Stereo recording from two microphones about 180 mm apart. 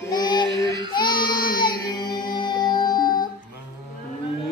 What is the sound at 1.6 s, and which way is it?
Music, 25° left (ahead or behind).